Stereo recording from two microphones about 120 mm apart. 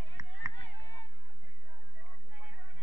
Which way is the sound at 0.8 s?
25° left (ahead or behind).